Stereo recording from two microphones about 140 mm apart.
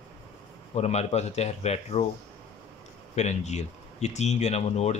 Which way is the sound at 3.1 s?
55° left (ahead or behind).